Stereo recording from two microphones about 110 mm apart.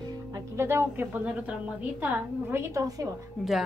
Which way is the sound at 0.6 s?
20° right (ahead or behind).